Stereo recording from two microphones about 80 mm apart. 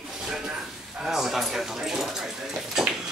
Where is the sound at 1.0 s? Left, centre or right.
Centre.